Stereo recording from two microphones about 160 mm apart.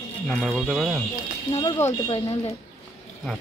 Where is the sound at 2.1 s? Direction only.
35° left (ahead or behind).